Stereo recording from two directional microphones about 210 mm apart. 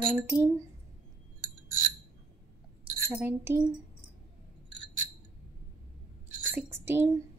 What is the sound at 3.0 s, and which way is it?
Speech, 10° right (ahead or behind).